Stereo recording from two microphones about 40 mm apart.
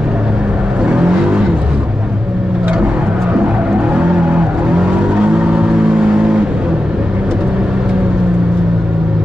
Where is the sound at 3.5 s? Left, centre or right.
Right.